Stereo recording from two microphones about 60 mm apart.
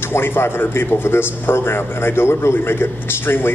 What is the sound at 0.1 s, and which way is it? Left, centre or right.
A man's voice, left.